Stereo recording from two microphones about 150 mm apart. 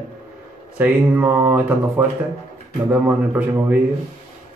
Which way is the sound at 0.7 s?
15° right (ahead or behind).